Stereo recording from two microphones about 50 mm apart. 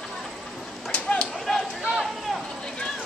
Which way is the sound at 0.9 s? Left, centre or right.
Left.